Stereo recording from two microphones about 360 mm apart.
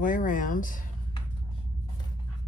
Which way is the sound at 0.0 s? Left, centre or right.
Left.